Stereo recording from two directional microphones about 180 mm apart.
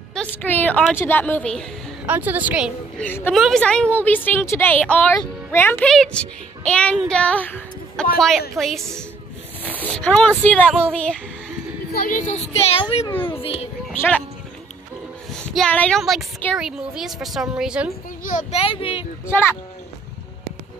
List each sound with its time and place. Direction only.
0.1 s a woman's voice: 10° left (ahead or behind)
2.0 s a woman's voice: 10° right (ahead or behind)
3.0 s a woman's voice: 10° left (ahead or behind)
11.9 s a child's voice: 50° left (ahead or behind); by 13.7 s 30° left (ahead or behind)
15.4 s a woman's voice: 5° left (ahead or behind)
18.2 s a child's voice: 45° left (ahead or behind)